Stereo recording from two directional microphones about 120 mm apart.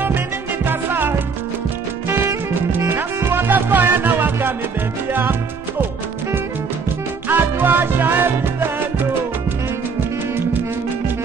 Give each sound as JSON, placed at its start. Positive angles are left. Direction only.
{"t": 0.7, "sound": "music", "side_deg": -15}
{"t": 7.2, "sound": "music", "side_deg": -15}